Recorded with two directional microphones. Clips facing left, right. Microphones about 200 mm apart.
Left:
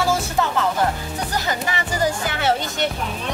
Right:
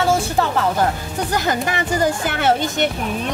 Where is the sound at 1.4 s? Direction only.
50° right (ahead or behind).